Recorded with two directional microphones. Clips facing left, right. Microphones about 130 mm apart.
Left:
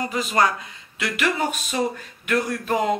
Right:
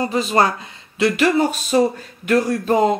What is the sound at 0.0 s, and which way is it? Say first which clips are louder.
Speech: right 4 dB; 30° right (ahead or behind).